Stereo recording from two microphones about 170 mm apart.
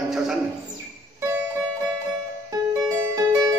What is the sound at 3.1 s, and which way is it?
Music, 20° right (ahead or behind).